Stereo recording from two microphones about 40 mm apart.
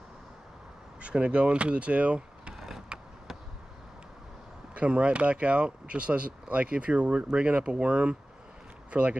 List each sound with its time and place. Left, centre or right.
1.0 s speech: right
2.5 s mechanisms: centre
4.7 s speech: right